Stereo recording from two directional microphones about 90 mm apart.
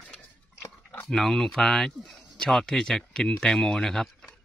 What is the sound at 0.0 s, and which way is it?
Dog, 10° left (ahead or behind).